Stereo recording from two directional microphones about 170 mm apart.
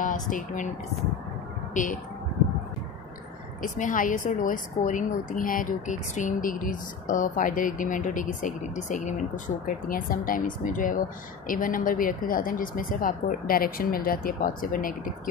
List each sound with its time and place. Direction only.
0.0 s speech: 50° left (ahead or behind)
1.7 s a woman's voice: 50° left (ahead or behind)
3.6 s a woman's voice: 50° left (ahead or behind)